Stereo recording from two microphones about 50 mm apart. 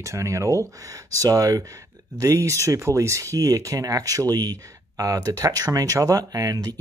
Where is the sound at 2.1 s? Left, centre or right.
Right.